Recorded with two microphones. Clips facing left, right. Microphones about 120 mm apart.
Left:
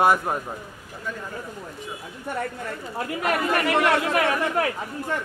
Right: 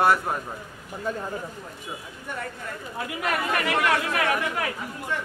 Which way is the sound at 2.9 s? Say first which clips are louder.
Left 3 dB; 35° left (ahead or behind).